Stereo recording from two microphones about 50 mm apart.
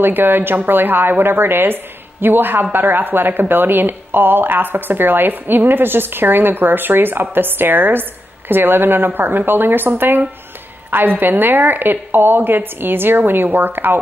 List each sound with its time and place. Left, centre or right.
0.0 s speech: right